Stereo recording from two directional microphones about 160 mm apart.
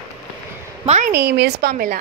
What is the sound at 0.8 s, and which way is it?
Speech, 45° right (ahead or behind).